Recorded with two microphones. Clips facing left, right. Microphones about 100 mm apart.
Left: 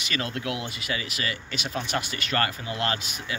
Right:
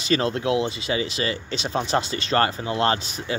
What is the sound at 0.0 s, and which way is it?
Speech, 30° right (ahead or behind).